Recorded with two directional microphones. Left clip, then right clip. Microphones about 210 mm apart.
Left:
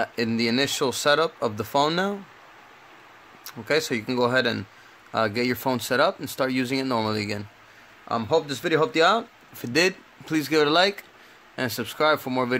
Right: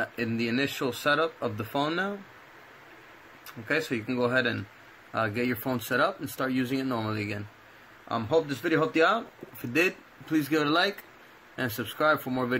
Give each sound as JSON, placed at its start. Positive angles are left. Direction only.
{"t": 0.0, "sound": "speech", "side_deg": 45}
{"t": 3.4, "sound": "speech", "side_deg": 40}